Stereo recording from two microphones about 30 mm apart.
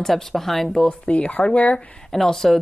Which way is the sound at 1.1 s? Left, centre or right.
Left.